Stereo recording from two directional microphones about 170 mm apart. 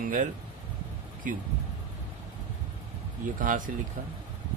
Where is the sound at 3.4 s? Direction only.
50° right (ahead or behind).